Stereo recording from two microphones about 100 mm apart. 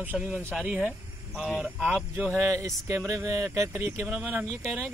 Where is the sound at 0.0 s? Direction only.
15° right (ahead or behind).